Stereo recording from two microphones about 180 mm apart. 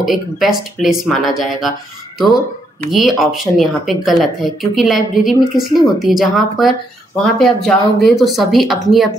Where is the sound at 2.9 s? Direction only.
Centre (ahead or behind).